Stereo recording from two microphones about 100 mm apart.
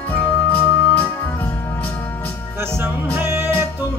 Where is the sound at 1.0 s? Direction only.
25° left (ahead or behind).